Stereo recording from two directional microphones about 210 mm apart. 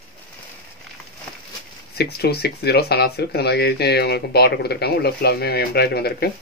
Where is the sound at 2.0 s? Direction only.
50° left (ahead or behind).